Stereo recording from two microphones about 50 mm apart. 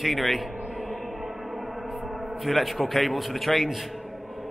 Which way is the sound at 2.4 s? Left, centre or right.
Centre.